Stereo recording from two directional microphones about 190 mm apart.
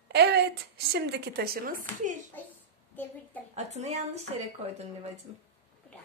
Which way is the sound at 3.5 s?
35° right (ahead or behind).